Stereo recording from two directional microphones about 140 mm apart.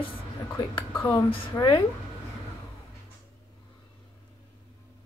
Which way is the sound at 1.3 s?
35° left (ahead or behind).